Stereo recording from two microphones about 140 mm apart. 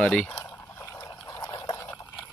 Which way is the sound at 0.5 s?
20° left (ahead or behind).